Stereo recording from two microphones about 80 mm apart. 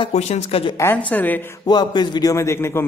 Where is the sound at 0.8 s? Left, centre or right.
Left.